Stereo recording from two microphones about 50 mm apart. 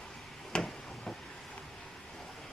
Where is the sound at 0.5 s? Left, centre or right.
Centre.